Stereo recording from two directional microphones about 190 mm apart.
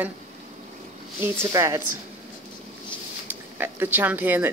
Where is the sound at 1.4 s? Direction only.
15° right (ahead or behind).